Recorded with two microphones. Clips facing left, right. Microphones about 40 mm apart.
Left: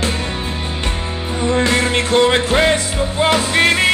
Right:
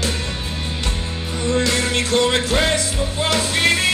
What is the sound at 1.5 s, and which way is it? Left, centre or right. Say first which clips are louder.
Music: left 3 dB; left.